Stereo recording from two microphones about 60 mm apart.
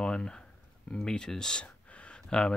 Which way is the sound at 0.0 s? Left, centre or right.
Centre.